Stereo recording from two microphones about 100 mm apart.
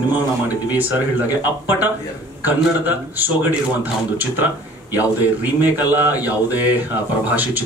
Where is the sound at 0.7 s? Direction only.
15° right (ahead or behind).